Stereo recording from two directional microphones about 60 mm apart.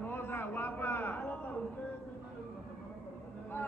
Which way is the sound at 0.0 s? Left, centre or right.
Left.